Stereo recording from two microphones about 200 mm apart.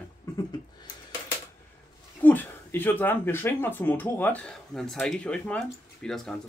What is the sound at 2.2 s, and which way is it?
Speech, 10° left (ahead or behind).